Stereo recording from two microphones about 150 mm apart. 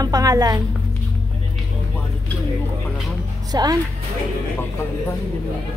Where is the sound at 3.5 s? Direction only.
25° right (ahead or behind).